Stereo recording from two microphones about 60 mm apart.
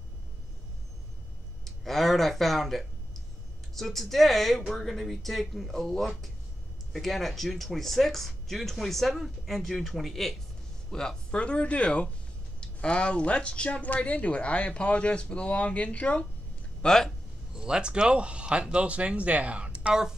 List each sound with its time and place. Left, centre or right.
1.6 s speech: centre; by 16.3 s left
16.8 s speech: centre
17.6 s speech: centre